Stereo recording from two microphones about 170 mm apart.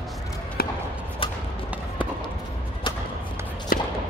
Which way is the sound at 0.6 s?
65° left (ahead or behind).